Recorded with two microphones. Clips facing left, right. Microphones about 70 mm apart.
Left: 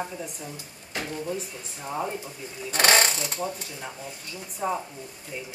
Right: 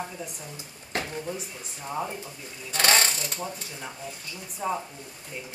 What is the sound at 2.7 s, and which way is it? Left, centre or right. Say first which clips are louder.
Speech: left 2 dB; centre.